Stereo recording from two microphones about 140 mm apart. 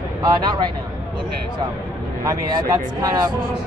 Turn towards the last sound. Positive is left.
turn(degrees=-25)  # may be behind; listen again after turning